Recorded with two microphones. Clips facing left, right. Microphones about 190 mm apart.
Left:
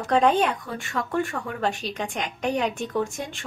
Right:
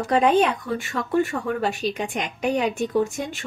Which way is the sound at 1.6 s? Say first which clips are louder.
Right 3 dB; 10° right (ahead or behind).